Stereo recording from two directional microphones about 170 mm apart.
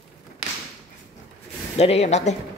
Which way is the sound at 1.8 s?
40° left (ahead or behind).